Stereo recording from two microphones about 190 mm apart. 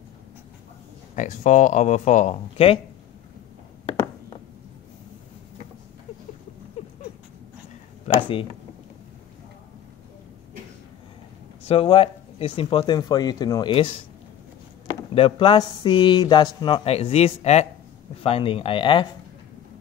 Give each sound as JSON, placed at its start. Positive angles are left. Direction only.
{"t": 1.1, "sound": "speech", "side_deg": 40}
{"t": 8.1, "sound": "a sound", "side_deg": 35}
{"t": 11.6, "sound": "speech", "side_deg": 30}
{"t": 15.1, "sound": "speech", "side_deg": 25}